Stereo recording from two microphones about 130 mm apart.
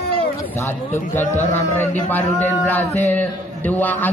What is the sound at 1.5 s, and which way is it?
A man's voice, 20° left (ahead or behind).